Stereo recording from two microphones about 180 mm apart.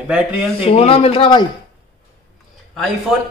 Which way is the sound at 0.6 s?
30° left (ahead or behind).